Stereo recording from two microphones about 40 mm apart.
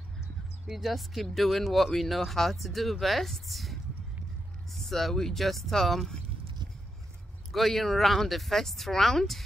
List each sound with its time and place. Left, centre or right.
0.7 s speech: centre
7.5 s speech: centre